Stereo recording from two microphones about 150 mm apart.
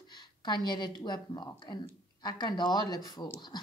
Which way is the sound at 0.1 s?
30° left (ahead or behind).